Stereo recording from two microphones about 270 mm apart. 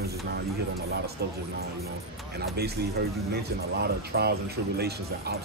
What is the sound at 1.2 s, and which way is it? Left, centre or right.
Speech, right.